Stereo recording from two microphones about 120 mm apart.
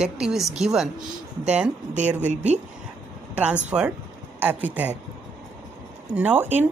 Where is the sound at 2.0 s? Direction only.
15° right (ahead or behind).